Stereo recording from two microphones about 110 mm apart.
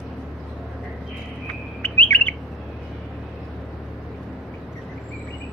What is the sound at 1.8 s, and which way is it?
Bird, 15° left (ahead or behind).